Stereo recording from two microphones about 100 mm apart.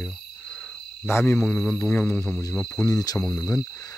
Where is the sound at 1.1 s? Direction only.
25° left (ahead or behind).